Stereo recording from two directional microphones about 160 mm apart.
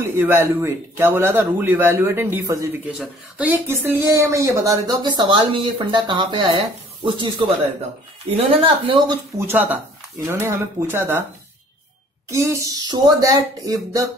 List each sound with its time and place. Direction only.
0.0 s a man's voice: 15° right (ahead or behind)
3.0 s a woman's voice: 10° right (ahead or behind); by 9.2 s 30° right (ahead or behind)
9.4 s a man's voice: 10° right (ahead or behind)
12.3 s speech: 20° right (ahead or behind)